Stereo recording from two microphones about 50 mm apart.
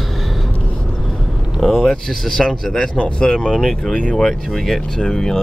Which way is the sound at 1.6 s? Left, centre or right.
Centre.